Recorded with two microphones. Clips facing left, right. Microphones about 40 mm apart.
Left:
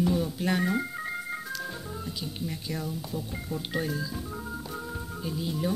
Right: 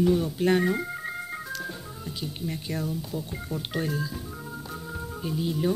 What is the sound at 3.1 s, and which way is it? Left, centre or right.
Speech, centre.